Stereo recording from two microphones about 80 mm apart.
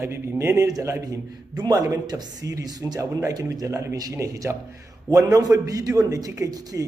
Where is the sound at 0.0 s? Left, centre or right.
Right.